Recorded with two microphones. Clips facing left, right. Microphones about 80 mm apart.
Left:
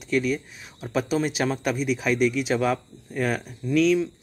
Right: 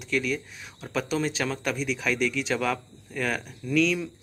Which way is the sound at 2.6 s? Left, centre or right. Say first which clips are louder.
Left 4 dB; left.